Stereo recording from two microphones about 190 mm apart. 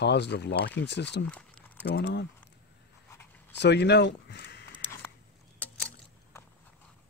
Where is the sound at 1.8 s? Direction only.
60° left (ahead or behind).